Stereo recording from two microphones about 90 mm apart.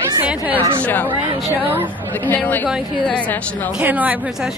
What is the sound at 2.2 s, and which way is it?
Speech, 20° left (ahead or behind).